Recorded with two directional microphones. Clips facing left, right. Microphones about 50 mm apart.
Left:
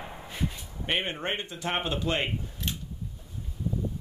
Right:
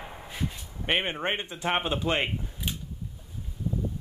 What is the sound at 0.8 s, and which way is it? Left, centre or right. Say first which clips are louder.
Speech: right 2 dB; centre.